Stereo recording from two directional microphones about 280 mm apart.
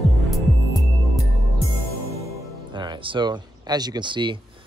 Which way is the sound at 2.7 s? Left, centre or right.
Centre.